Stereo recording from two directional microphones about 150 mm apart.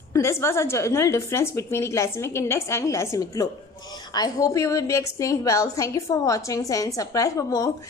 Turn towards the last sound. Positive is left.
turn(degrees=20)  # may be behind; listen again after turning